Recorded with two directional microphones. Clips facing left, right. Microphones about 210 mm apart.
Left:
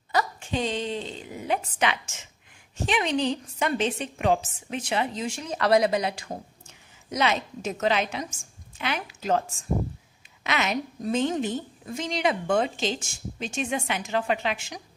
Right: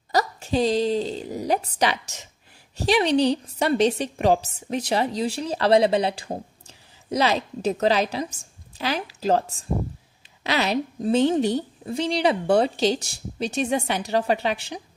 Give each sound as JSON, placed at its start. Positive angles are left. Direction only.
{"t": 0.1, "sound": "a woman's voice", "side_deg": -40}